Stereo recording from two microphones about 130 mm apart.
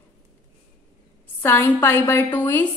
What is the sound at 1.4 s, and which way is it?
A woman's voice, 15° left (ahead or behind).